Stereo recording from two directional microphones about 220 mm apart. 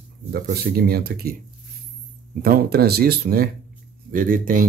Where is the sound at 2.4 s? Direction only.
45° right (ahead or behind).